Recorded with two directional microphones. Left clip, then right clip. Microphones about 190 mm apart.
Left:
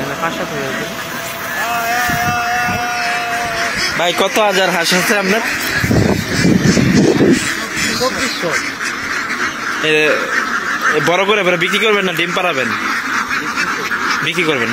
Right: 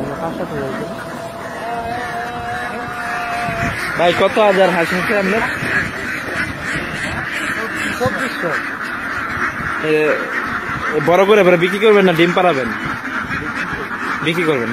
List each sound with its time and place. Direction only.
4.0 s speech: 25° left (ahead or behind)
11.1 s a man's voice: 10° right (ahead or behind)